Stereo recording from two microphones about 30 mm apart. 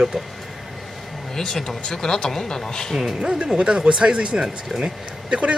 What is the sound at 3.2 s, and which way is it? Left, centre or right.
Speech, right.